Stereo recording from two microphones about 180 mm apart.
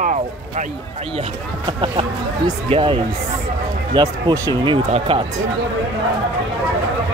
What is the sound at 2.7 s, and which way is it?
Speech, 30° right (ahead or behind).